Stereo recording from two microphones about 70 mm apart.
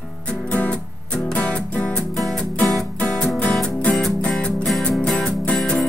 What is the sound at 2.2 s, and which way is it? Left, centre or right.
Music, centre.